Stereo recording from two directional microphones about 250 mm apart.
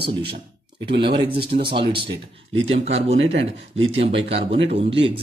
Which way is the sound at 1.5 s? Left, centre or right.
Centre.